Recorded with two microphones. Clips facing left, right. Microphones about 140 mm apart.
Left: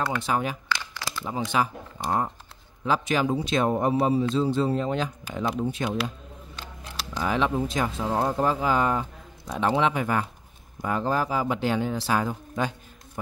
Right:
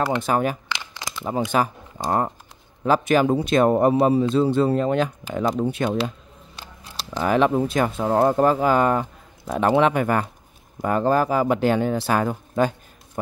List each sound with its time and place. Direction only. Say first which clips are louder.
0.2 s speech: right 5 dB; 50° right (ahead or behind)
0.7 s crumpling: left 1 dB; 20° right (ahead or behind)
1.5 s speech: right 4 dB; 50° right (ahead or behind)
7.2 s speech: right 6 dB; 55° right (ahead or behind)